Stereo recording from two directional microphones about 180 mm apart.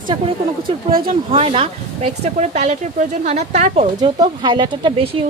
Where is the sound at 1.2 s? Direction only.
30° right (ahead or behind).